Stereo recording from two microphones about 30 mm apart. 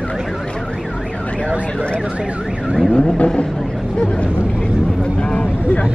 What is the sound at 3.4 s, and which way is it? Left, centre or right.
Vehicle, centre.